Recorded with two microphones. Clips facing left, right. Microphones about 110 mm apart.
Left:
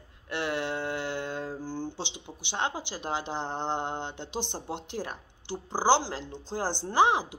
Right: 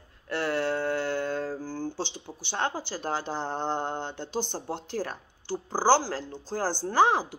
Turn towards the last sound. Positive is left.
turn(degrees=20)  # may be behind; listen again after turning